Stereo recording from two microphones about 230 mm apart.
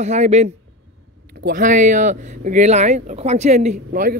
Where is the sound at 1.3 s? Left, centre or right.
Right.